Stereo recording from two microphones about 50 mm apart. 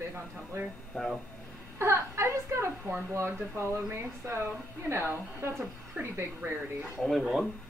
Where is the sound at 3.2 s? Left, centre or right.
Right.